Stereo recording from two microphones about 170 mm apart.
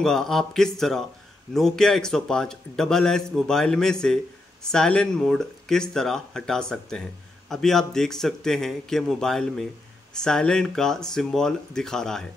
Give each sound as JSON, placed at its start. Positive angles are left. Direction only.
{"t": 0.0, "sound": "speech", "side_deg": 5}